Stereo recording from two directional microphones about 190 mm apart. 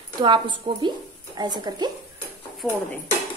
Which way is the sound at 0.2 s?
25° right (ahead or behind).